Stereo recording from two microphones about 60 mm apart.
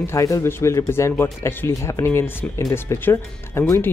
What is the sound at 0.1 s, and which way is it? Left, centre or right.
Speech, left.